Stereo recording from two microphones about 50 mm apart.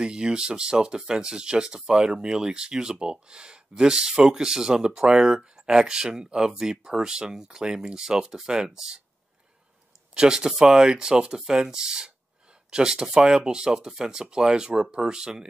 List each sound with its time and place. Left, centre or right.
0.0 s speech: centre
10.1 s speech: centre